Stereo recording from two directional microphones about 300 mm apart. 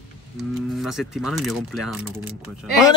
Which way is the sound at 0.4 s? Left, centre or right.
Centre.